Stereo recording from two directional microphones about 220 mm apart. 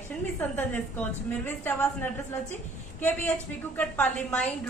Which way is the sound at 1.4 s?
10° left (ahead or behind).